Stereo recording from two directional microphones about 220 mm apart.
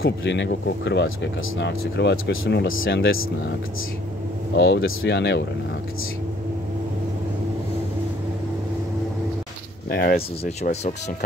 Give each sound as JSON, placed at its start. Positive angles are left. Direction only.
{"t": 0.0, "sound": "speech", "side_deg": 50}
{"t": 4.6, "sound": "speech", "side_deg": 60}
{"t": 9.8, "sound": "speech", "side_deg": 45}
{"t": 10.6, "sound": "speech", "side_deg": 30}